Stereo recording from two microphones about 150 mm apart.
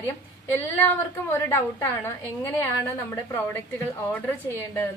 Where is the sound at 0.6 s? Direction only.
15° left (ahead or behind).